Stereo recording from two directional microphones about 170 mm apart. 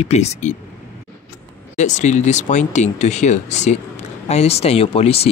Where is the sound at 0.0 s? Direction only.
40° left (ahead or behind).